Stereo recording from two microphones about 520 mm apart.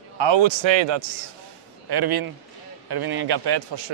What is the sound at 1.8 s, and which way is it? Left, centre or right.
Speech, right.